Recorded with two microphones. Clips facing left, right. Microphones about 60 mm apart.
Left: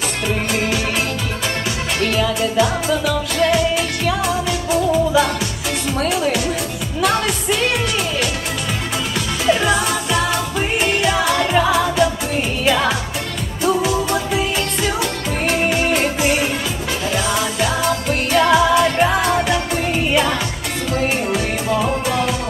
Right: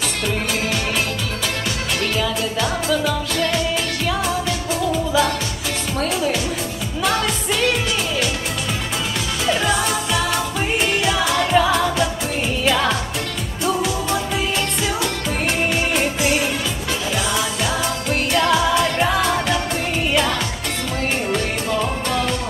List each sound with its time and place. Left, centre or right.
2.1 s music: centre
9.5 s music: centre
14.8 s music: centre